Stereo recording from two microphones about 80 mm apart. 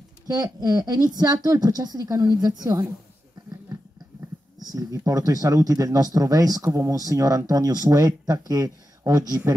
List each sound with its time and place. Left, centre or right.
0.3 s speech: right
4.6 s speech: right